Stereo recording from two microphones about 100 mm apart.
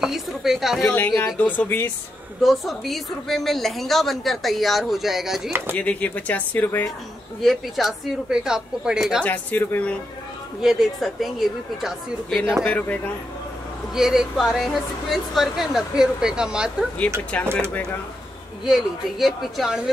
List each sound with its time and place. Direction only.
0.0 s a woman's voice: 5° right (ahead or behind)
0.8 s speech: 20° left (ahead or behind)
2.4 s a woman's voice: centre (ahead or behind)
5.8 s speech: 15° left (ahead or behind)
7.4 s a woman's voice: centre (ahead or behind)
9.2 s speech: 15° left (ahead or behind)
10.6 s a woman's voice: centre (ahead or behind)
12.6 s speech: 15° left (ahead or behind)
13.9 s a woman's voice: 5° right (ahead or behind)
18.7 s a woman's voice: centre (ahead or behind)